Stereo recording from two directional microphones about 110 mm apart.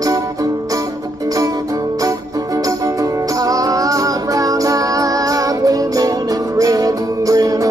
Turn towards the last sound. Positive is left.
turn(degrees=-30)  # may be behind; listen again after turning